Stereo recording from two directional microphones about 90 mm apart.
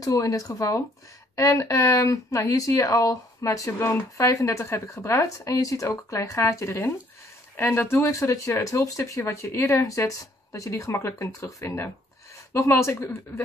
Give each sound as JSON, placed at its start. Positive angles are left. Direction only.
{"t": 0.0, "sound": "speech", "side_deg": 40}